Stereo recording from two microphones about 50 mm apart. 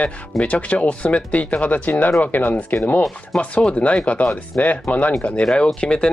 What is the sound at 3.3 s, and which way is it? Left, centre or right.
Speech, centre.